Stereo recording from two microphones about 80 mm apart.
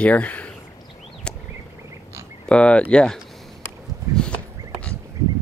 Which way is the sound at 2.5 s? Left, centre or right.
Centre.